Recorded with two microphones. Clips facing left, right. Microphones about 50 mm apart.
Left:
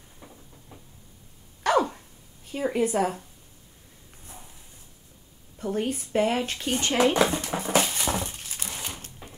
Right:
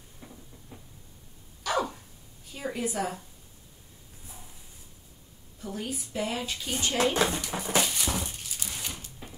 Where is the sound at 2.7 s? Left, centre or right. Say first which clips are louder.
Left 7 dB; left.